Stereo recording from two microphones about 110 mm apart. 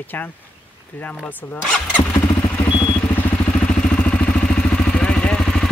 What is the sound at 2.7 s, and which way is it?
Vehicle, 45° left (ahead or behind).